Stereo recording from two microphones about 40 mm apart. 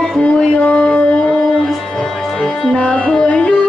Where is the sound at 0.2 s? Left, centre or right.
Left.